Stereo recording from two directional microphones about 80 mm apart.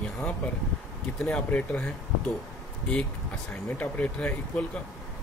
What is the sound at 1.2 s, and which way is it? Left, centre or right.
Speech, centre.